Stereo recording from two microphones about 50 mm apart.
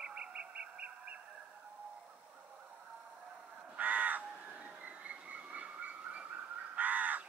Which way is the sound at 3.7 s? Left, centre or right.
Right.